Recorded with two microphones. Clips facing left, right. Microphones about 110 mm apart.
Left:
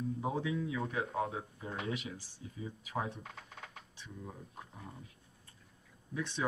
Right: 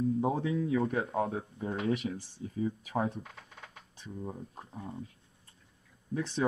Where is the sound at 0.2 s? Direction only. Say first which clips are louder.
Right 5 dB; 40° right (ahead or behind).